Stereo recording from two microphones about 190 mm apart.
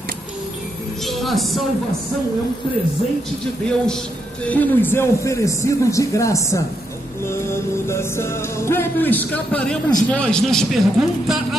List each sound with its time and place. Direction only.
1.0 s music: centre (ahead or behind)
3.6 s a man's voice: 5° left (ahead or behind)
4.5 s music: 10° left (ahead or behind)
10.0 s a man's voice: 5° left (ahead or behind)